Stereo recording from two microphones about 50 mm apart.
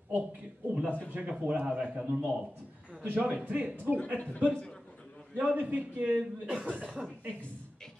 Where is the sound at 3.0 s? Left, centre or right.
Right.